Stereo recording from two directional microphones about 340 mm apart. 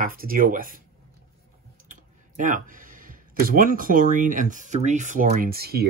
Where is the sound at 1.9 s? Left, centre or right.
Right.